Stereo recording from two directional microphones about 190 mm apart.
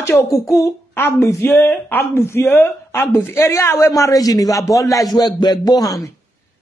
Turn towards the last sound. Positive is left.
turn(degrees=20)  # may be behind; listen again after turning